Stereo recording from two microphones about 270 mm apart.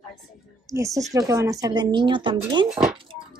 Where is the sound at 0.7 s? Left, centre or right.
Centre.